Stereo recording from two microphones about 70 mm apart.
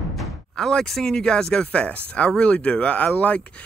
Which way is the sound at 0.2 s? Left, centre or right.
Centre.